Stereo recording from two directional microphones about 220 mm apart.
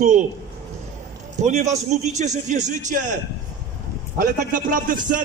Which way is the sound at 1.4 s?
30° right (ahead or behind).